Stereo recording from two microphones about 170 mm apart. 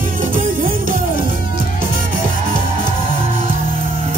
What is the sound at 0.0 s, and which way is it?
Music, 55° right (ahead or behind).